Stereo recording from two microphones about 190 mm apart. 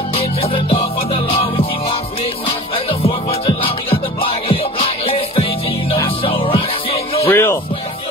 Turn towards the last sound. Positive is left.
turn(degrees=10)  # may be behind; listen again after turning